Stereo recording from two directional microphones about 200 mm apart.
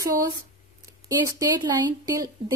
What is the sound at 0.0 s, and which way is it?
A woman's voice, 15° right (ahead or behind).